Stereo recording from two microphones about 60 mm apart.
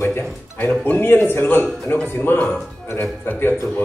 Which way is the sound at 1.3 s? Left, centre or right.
Left.